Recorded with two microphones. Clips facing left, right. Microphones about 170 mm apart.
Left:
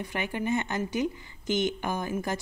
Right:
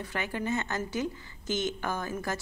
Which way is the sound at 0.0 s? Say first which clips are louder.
Left 2 dB; 15° left (ahead or behind).